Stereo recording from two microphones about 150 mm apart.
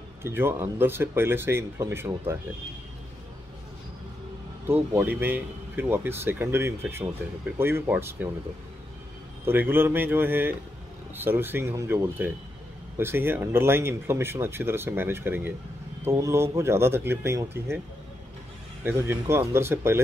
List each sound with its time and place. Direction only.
0.2 s speech: 15° right (ahead or behind)
4.6 s speech: 15° right (ahead or behind)
9.4 s speech: 15° right (ahead or behind)
18.9 s speech: 15° right (ahead or behind)